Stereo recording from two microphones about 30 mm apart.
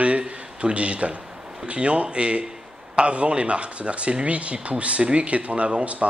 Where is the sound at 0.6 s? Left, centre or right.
Right.